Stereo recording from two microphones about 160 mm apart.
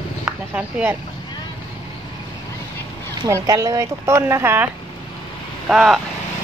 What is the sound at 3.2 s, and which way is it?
Speech, 20° right (ahead or behind).